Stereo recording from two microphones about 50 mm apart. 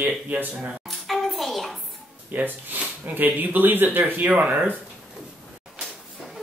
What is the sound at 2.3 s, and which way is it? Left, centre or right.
Speech, right.